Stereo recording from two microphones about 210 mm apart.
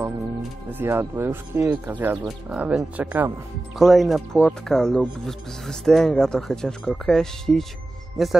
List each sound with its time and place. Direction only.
0.7 s speech: 10° right (ahead or behind)